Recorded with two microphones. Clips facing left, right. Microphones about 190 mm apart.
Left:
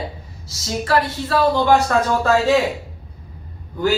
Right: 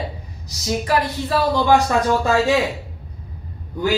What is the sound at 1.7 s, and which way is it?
Speech, 15° right (ahead or behind).